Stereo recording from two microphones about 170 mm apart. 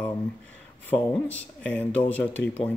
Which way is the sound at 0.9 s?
20° left (ahead or behind).